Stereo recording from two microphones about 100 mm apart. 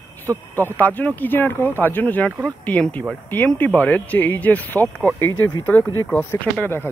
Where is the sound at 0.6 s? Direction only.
20° left (ahead or behind).